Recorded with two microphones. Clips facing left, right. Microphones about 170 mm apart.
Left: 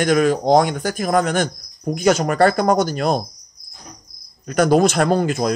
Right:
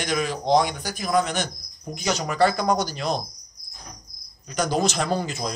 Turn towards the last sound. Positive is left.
turn(degrees=55)  # may be behind; listen again after turning